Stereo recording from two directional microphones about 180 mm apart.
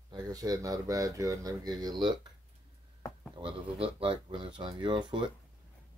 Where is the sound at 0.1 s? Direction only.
20° right (ahead or behind).